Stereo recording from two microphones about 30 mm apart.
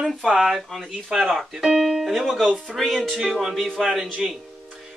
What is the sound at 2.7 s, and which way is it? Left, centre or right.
Music, centre.